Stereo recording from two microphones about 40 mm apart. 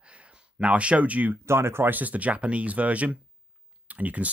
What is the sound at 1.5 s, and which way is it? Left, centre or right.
Speech, right.